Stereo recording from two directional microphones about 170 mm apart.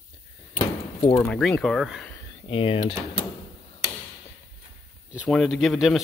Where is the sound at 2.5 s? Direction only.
35° left (ahead or behind).